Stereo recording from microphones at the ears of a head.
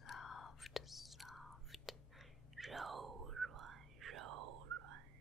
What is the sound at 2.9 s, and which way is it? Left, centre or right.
Whispering, right.